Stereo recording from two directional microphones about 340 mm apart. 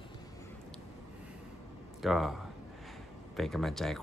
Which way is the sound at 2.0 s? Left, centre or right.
Centre.